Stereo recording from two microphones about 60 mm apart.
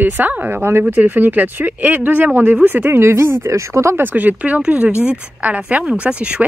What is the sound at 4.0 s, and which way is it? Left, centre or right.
Speech, right.